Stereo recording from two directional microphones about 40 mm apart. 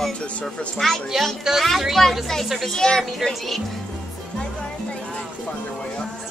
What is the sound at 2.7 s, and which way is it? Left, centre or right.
Speech, centre.